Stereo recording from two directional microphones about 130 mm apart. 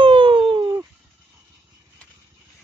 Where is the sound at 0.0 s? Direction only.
40° right (ahead or behind).